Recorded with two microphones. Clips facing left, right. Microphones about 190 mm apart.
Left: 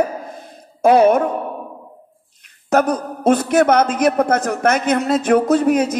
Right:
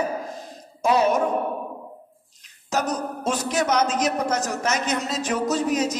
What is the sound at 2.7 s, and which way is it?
A man's voice, 55° left (ahead or behind).